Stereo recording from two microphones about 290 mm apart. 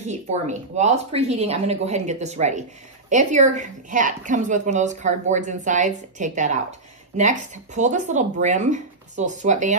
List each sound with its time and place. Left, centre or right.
0.0 s a woman's voice: right